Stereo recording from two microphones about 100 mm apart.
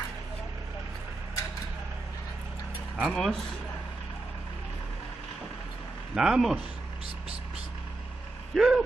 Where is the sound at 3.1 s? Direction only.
10° left (ahead or behind).